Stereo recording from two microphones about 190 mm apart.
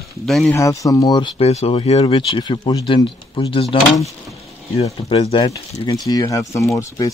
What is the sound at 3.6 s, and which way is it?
Speech, centre (ahead or behind).